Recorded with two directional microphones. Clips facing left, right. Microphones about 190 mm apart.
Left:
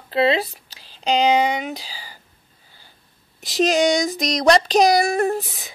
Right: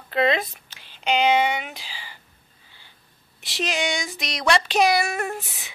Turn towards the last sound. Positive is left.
turn(degrees=35)  # may be behind; listen again after turning